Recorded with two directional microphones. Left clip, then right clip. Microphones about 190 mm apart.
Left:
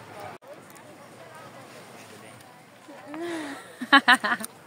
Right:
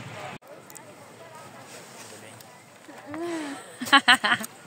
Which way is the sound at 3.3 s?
5° left (ahead or behind).